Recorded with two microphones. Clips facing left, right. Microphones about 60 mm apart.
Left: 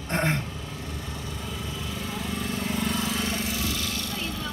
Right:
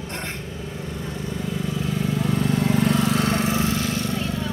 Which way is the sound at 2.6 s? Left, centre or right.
Right.